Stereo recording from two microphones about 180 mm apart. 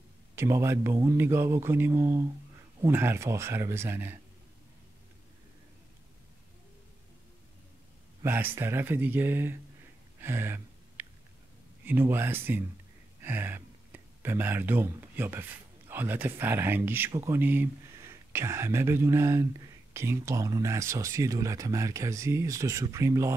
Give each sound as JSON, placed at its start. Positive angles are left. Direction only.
{"t": 0.4, "sound": "speech", "side_deg": -15}
{"t": 8.2, "sound": "speech", "side_deg": -10}
{"t": 10.2, "sound": "a sound", "side_deg": -15}
{"t": 11.8, "sound": "speech", "side_deg": -10}